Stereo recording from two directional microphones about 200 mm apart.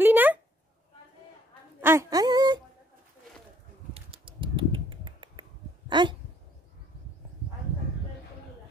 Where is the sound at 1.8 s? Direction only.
15° right (ahead or behind).